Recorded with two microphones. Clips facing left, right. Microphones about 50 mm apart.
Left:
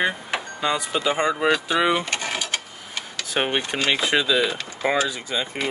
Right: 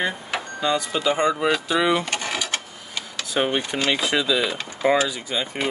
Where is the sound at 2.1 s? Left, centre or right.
Left.